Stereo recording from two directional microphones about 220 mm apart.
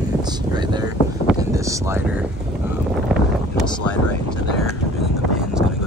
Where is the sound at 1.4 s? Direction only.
15° right (ahead or behind).